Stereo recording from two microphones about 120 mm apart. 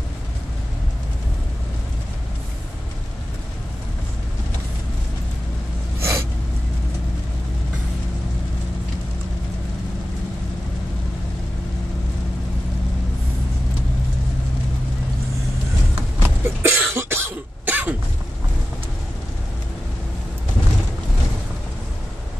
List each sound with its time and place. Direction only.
5.9 s gasp: 20° right (ahead or behind)
16.2 s cough: 20° right (ahead or behind)